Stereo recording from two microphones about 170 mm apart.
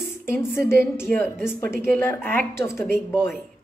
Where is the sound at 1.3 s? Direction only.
5° right (ahead or behind).